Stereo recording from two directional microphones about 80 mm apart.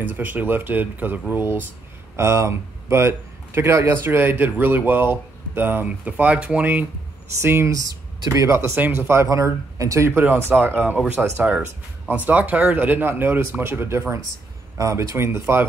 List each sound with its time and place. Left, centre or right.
0.0 s a man's voice: right
7.4 s speech: right
7.7 s speech: right
8.5 s speech: right
10.0 s a man's voice: right
11.2 s speech: centre
12.3 s a man's voice: centre